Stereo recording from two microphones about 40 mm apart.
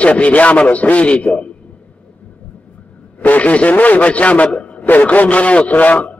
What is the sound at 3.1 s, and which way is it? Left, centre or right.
A man's voice, left.